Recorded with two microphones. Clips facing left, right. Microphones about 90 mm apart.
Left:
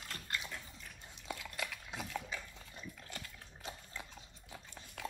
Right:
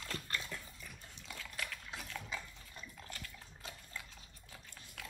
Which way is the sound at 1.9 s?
20° left (ahead or behind).